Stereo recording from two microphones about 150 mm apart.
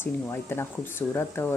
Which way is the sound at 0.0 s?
15° left (ahead or behind).